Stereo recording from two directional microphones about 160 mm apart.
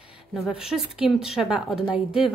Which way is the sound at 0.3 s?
Centre (ahead or behind).